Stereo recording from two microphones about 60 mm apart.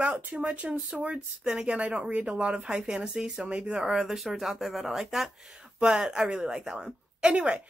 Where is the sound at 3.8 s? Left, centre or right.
Centre.